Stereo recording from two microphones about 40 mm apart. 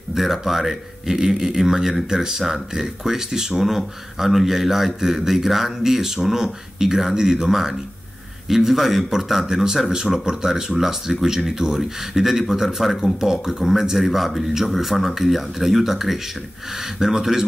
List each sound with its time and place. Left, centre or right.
0.1 s speech: centre